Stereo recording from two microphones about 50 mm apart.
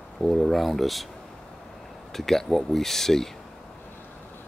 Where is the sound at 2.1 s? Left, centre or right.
Centre.